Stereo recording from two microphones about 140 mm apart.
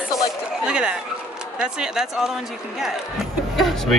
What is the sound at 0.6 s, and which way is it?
Speech, 5° right (ahead or behind).